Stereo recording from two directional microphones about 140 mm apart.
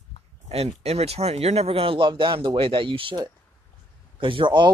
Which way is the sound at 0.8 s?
50° right (ahead or behind).